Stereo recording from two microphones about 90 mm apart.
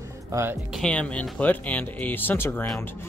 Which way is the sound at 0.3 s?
30° right (ahead or behind).